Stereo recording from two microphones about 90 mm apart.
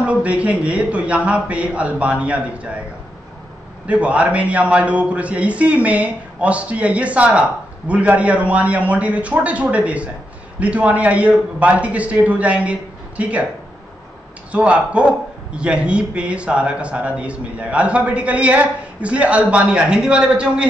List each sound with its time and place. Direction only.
0.0 s a man's voice: 15° right (ahead or behind)
3.8 s a man's voice: 15° right (ahead or behind)
14.5 s a man's voice: 15° right (ahead or behind)